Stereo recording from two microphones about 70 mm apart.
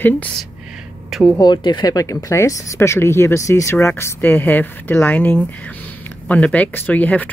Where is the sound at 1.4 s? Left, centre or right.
Left.